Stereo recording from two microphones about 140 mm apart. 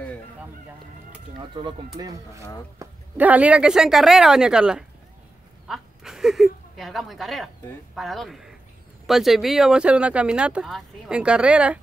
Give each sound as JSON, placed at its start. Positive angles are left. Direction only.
{"t": 1.6, "sound": "speech", "side_deg": -30}
{"t": 2.8, "sound": "bow-wow", "side_deg": -20}
{"t": 3.2, "sound": "speech", "side_deg": -10}